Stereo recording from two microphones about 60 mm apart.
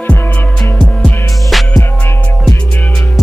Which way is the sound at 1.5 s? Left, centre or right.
Centre.